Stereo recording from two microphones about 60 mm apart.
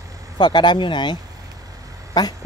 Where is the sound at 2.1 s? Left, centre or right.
Left.